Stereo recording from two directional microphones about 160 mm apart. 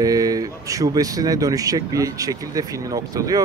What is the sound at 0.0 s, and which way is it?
Speech, 20° right (ahead or behind).